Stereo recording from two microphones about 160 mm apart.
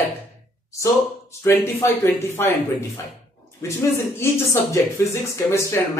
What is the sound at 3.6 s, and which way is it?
Speech, 15° left (ahead or behind).